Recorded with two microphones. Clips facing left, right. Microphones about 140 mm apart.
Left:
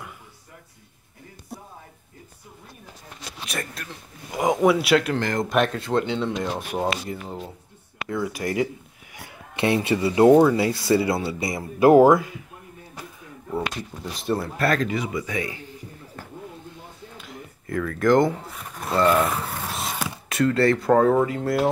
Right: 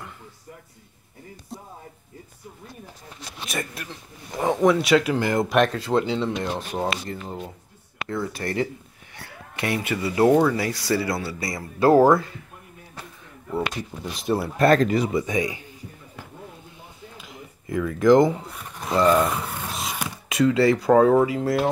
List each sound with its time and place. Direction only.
3.4 s speech: 5° right (ahead or behind)
4.3 s speech: 10° left (ahead or behind)
6.7 s speech: 10° left (ahead or behind)
14.2 s speech: 5° right (ahead or behind)
14.8 s speech: 35° right (ahead or behind)
15.2 s a man's voice: 15° right (ahead or behind)
17.6 s speech: 5° right (ahead or behind)